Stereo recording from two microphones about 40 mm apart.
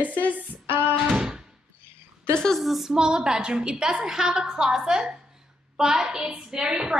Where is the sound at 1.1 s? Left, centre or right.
Centre.